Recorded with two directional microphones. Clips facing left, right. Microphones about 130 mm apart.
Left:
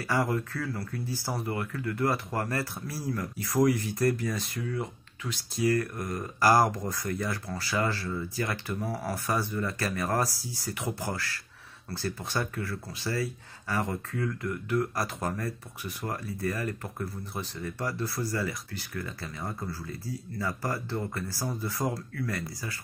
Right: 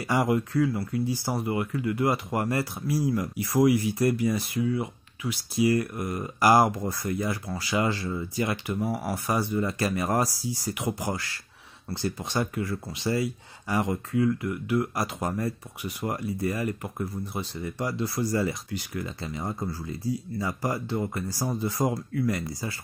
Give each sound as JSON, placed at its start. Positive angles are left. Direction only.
{"t": 0.0, "sound": "speech", "side_deg": -15}